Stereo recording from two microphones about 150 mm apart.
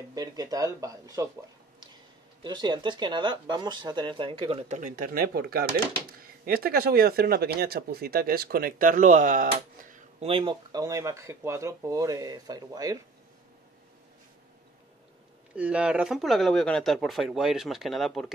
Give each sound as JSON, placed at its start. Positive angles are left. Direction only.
{"t": 0.1, "sound": "speech", "side_deg": -25}
{"t": 2.4, "sound": "speech", "side_deg": -30}
{"t": 4.7, "sound": "speech", "side_deg": -65}
{"t": 10.2, "sound": "speech", "side_deg": -35}
{"t": 15.5, "sound": "speech", "side_deg": -5}